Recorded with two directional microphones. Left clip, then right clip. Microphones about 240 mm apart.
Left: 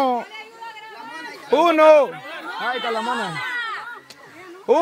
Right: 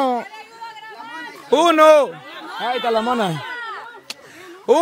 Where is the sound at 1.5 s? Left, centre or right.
Centre.